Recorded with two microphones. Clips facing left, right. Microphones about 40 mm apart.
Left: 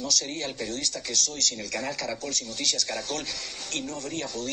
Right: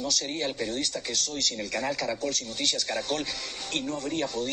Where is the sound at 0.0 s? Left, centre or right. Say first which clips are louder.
Right 1 dB; centre.